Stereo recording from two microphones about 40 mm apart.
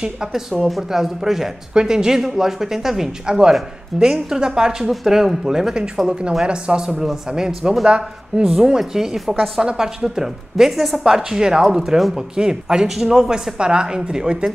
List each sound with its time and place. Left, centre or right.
0.0 s speech: centre
6.4 s speech: right
7.0 s speech: centre
9.6 s speech: centre
13.6 s speech: right